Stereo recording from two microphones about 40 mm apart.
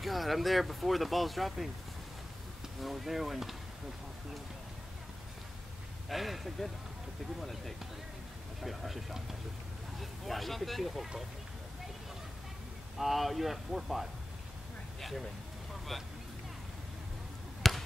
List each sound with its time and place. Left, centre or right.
0.0 s speech: centre
2.8 s speech: centre
6.0 s speech: centre
12.9 s speech: centre
17.6 s basketball bounce: centre